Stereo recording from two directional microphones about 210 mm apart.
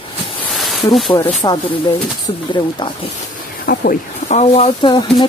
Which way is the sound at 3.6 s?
40° left (ahead or behind).